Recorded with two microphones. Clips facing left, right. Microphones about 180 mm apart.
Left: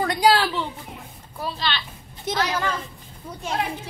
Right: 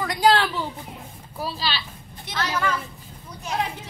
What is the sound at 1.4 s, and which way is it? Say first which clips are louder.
Speech: left 1 dB; 5° right (ahead or behind).